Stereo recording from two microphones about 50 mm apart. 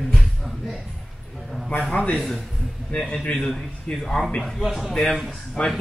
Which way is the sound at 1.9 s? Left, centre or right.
Left.